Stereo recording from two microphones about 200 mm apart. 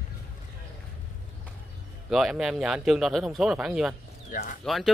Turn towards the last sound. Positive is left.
turn(degrees=0)  # may be behind; listen again after turning